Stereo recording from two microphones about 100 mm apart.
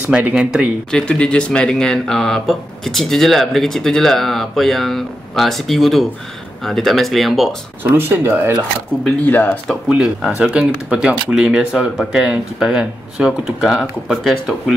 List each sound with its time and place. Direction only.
0.0 s speech: 10° right (ahead or behind)
0.9 s speech: 10° left (ahead or behind)
7.8 s speech: 20° right (ahead or behind)
9.2 s speech: 20° left (ahead or behind)
9.8 s speech: 10° right (ahead or behind)